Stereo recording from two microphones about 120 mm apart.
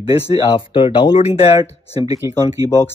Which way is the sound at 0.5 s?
45° left (ahead or behind).